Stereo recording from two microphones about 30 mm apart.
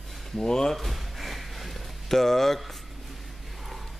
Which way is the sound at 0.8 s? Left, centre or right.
Centre.